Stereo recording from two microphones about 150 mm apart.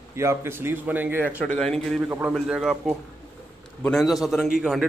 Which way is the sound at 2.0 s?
15° right (ahead or behind).